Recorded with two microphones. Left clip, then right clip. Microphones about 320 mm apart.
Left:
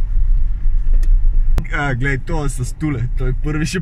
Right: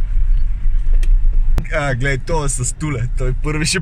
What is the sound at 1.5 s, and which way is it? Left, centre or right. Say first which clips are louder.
Speech: right 1 dB; centre.